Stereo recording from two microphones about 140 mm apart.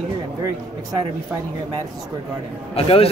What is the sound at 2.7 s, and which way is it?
Speech, 45° left (ahead or behind).